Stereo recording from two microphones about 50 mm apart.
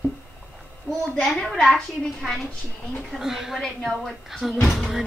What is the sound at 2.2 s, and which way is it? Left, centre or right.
A woman's voice, centre.